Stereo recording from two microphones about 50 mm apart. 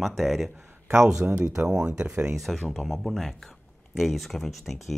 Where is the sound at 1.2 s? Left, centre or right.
Right.